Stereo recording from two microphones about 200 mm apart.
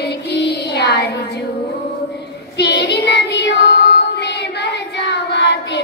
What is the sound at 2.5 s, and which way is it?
Child singing, 55° left (ahead or behind).